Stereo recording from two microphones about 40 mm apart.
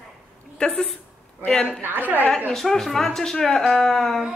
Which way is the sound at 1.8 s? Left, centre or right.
Right.